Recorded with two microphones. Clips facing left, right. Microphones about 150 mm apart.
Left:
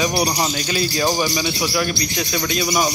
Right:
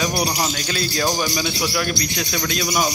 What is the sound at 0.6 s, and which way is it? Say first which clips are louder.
Speech: left 3 dB; 5° left (ahead or behind).